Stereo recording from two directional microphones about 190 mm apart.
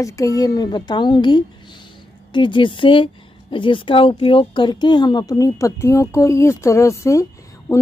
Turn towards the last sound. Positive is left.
turn(degrees=15)  # may be behind; listen again after turning